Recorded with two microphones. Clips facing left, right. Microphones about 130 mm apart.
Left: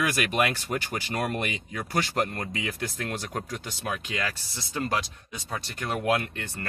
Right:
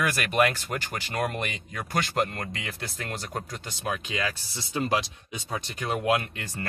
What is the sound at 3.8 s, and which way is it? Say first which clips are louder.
Speech: right 2 dB; 5° right (ahead or behind).